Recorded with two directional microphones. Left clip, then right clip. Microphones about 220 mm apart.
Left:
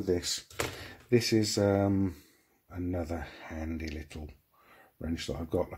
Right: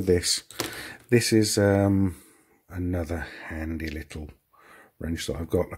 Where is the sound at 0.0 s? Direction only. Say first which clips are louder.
Right 8 dB; 35° right (ahead or behind).